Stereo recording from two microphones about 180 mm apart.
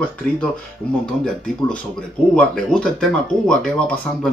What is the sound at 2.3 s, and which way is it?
Speech, 5° left (ahead or behind).